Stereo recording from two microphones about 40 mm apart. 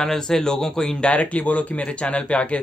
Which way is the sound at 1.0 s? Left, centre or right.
Left.